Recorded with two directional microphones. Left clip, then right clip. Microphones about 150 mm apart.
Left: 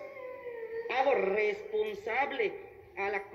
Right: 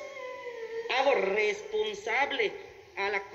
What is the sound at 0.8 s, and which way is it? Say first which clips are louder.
A woman's voice: right 2 dB; 15° left (ahead or behind).